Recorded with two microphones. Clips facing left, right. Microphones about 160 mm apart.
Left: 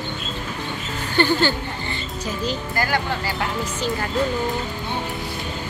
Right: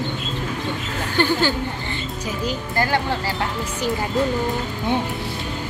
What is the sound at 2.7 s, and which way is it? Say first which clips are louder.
Speech: right 3 dB; 25° right (ahead or behind).